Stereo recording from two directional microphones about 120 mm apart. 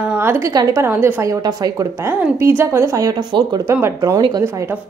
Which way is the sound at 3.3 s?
40° right (ahead or behind).